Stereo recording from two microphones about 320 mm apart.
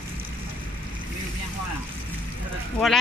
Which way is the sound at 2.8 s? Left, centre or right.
Centre.